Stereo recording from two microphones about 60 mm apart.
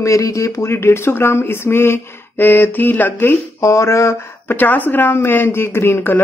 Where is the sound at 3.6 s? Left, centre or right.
Left.